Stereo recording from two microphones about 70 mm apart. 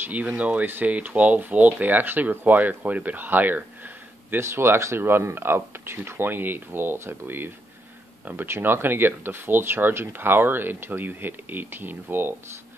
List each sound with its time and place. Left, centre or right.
0.0 s speech: right
4.5 s speech: right